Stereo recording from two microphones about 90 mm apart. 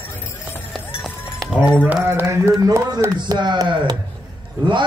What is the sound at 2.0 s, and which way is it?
A man's voice, 30° right (ahead or behind).